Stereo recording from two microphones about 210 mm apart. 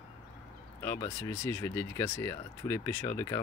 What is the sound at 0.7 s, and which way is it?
Speech, 10° left (ahead or behind).